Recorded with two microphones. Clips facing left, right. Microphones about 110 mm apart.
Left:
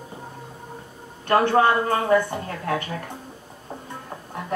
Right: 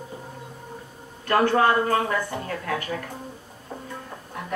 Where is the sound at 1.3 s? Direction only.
25° left (ahead or behind).